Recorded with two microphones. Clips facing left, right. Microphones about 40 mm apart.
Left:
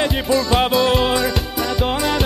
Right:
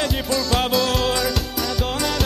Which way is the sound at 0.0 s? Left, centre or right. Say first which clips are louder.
Left 4 dB; centre.